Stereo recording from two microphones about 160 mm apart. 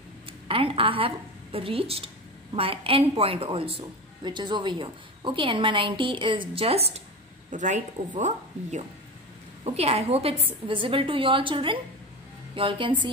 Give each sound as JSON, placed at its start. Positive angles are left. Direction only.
{"t": 0.5, "sound": "a woman's voice", "side_deg": -35}